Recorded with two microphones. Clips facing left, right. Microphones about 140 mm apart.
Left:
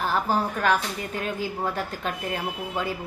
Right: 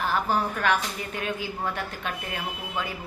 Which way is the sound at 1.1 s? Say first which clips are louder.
Left 2 dB; 40° left (ahead or behind).